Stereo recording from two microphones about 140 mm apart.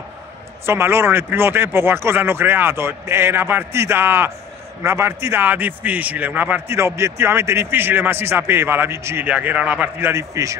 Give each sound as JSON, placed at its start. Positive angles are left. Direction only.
{"t": 0.7, "sound": "a man's voice", "side_deg": -15}